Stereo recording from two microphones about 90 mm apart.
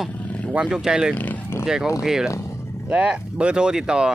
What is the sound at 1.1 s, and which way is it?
Speech, 20° left (ahead or behind).